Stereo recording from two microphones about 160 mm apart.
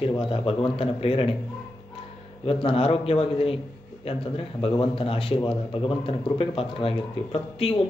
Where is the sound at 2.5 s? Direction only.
35° left (ahead or behind).